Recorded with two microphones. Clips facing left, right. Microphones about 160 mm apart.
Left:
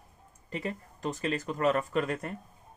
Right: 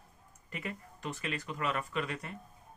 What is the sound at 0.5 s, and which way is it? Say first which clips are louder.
Speech: left 6 dB; 35° left (ahead or behind).